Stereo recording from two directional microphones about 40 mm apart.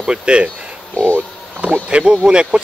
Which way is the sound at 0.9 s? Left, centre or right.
Left.